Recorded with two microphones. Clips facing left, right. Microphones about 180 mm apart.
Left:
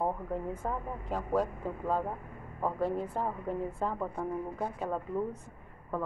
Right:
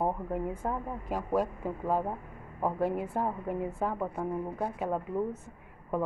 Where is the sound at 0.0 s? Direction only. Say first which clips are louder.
Right 2 dB; 10° right (ahead or behind).